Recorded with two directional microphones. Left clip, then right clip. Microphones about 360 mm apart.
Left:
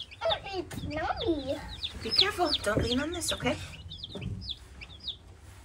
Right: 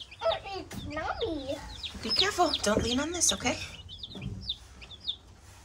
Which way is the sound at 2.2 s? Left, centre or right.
Centre.